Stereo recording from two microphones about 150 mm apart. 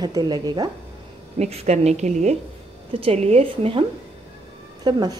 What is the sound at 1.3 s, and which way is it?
A woman's voice, 45° right (ahead or behind).